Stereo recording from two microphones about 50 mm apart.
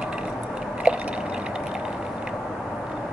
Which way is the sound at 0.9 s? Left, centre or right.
Right.